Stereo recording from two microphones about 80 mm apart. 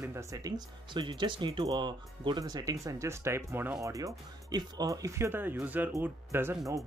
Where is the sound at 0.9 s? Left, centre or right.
Right.